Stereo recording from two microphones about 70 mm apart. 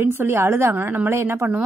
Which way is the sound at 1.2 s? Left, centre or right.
Right.